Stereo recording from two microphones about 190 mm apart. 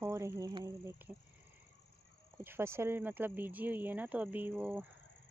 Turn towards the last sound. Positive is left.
turn(degrees=-10)  # may be behind; listen again after turning